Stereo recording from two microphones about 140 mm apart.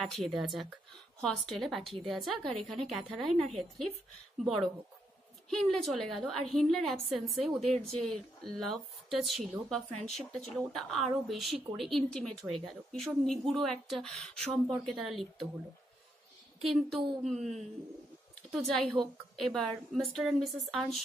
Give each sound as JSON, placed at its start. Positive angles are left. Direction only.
{"t": 0.0, "sound": "a woman's voice", "side_deg": 0}
{"t": 5.5, "sound": "a woman's voice", "side_deg": 5}
{"t": 16.6, "sound": "a woman's voice", "side_deg": 0}
{"t": 17.4, "sound": "speech", "side_deg": -55}
{"t": 18.7, "sound": "a woman's voice", "side_deg": 0}